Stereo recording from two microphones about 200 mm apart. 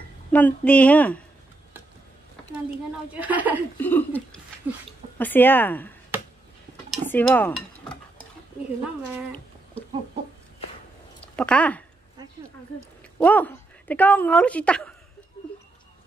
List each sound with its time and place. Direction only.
0.3 s a woman's voice: 10° left (ahead or behind)
3.1 s speech: 10° right (ahead or behind)
3.8 s a woman's voice: 10° left (ahead or behind)
11.3 s a woman's voice: 5° left (ahead or behind)
13.2 s speech: 10° left (ahead or behind)